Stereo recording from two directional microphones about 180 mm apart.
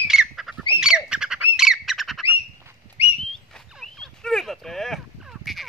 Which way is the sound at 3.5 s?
Centre (ahead or behind).